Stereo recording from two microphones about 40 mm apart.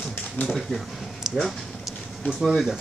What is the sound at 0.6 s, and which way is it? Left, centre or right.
Speech, centre.